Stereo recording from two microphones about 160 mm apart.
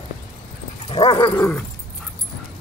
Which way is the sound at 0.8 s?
35° left (ahead or behind).